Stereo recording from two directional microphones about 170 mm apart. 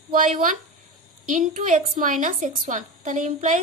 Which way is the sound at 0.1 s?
50° right (ahead or behind).